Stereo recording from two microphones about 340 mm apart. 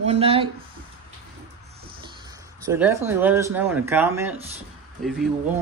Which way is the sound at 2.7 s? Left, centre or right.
Centre.